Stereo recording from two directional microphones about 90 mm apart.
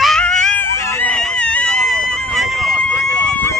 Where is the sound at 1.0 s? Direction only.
10° left (ahead or behind).